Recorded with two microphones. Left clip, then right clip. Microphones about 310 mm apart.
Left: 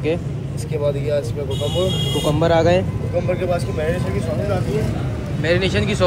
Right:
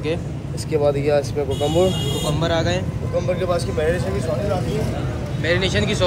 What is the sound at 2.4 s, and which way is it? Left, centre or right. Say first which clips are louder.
Speech: left 7 dB; centre.